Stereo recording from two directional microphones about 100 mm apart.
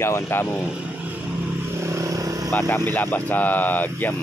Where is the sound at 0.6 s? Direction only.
10° right (ahead or behind).